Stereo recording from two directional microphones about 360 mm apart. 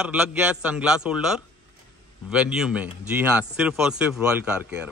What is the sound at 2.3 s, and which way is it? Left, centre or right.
A man's voice, centre.